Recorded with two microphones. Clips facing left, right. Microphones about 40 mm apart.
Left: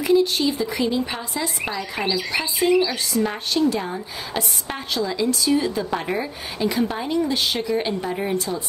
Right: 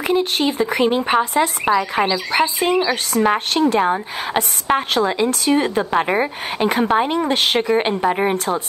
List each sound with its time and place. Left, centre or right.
0.0 s a woman's voice: right